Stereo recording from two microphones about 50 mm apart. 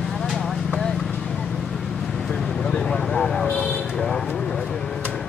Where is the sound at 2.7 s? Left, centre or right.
Centre.